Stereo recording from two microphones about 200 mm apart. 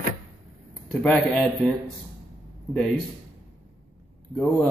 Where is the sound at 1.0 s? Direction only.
5° left (ahead or behind).